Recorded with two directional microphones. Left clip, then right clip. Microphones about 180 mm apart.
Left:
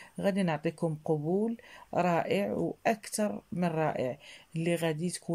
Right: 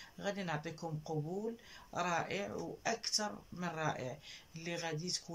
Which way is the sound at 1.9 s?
50° left (ahead or behind).